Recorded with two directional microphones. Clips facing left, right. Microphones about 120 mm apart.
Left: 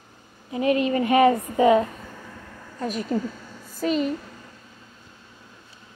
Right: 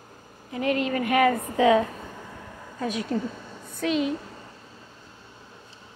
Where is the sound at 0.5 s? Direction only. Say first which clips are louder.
Left 4 dB; 20° left (ahead or behind).